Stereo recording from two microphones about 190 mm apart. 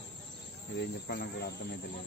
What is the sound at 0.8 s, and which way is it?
Speech, 60° left (ahead or behind).